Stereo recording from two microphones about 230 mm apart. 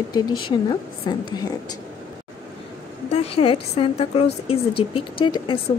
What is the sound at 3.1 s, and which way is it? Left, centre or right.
A woman's voice, left.